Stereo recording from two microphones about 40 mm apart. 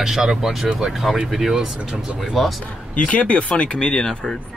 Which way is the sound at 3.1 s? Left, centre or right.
Left.